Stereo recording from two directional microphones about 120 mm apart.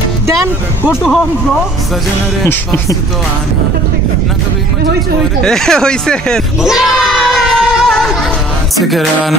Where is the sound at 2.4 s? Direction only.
20° left (ahead or behind).